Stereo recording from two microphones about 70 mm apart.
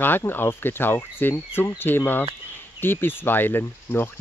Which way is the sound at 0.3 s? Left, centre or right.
Left.